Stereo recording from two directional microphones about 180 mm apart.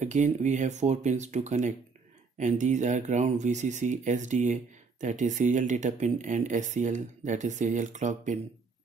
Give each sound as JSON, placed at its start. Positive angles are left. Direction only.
{"t": 0.0, "sound": "speech", "side_deg": -40}